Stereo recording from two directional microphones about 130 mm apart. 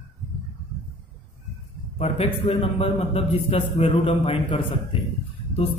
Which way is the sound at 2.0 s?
50° left (ahead or behind).